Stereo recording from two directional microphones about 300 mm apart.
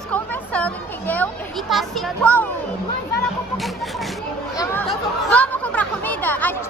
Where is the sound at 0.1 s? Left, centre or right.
Centre.